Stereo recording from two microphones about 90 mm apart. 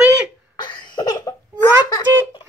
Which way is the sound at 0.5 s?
55° left (ahead or behind).